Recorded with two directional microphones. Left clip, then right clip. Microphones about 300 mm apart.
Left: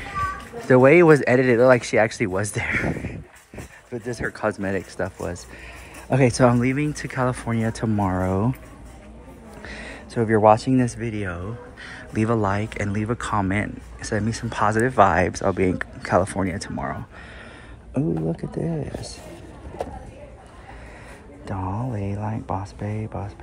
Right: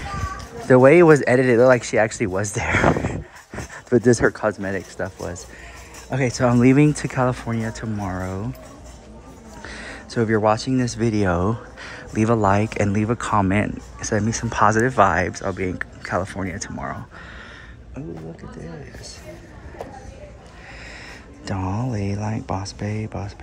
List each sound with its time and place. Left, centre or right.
0.7 s speech: centre
3.9 s speech: right
4.3 s speech: centre
9.6 s a sound: centre
11.0 s speech: centre
21.5 s speech: centre